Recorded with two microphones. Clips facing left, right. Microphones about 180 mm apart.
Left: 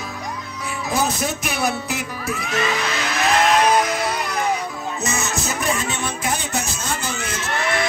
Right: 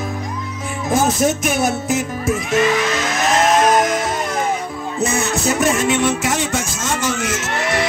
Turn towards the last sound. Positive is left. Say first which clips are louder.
# right 3 dB
turn(degrees=-90)